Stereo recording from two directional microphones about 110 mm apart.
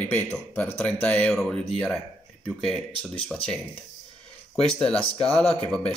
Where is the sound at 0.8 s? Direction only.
10° left (ahead or behind).